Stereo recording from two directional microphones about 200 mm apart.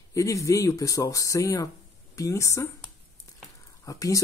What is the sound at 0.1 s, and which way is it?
Speech, 15° left (ahead or behind).